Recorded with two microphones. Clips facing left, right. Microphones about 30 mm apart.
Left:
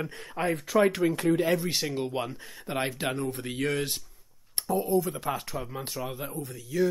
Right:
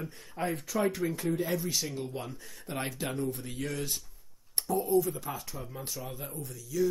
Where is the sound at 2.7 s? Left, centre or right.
Left.